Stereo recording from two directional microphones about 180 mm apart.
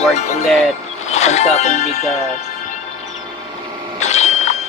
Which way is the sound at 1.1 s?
40° left (ahead or behind).